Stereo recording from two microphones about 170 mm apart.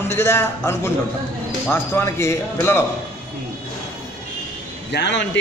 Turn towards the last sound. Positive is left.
turn(degrees=90)